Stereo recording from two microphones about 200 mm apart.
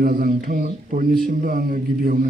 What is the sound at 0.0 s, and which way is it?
Speech, 45° right (ahead or behind).